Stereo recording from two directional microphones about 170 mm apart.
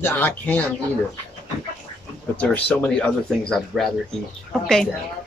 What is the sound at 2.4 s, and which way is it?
Speech, 10° left (ahead or behind).